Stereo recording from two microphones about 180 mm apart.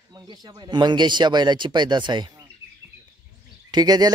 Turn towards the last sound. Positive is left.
turn(degrees=-25)  # may be behind; listen again after turning